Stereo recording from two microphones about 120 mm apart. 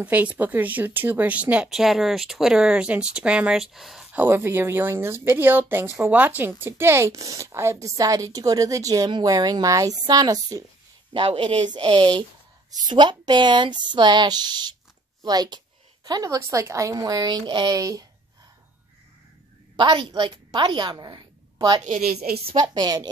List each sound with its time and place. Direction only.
0.0 s speech: 10° right (ahead or behind)
4.1 s a woman's voice: 15° right (ahead or behind)
11.1 s a woman's voice: 45° right (ahead or behind)
19.8 s a woman's voice: 40° right (ahead or behind)